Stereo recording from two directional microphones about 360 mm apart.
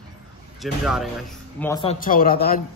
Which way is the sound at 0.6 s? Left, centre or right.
Centre.